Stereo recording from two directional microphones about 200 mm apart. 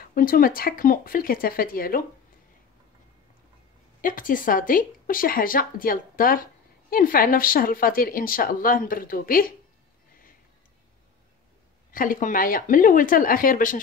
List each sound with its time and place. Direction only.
0.0 s speech: 45° left (ahead or behind)
4.0 s speech: 45° left (ahead or behind)
11.9 s speech: 45° left (ahead or behind)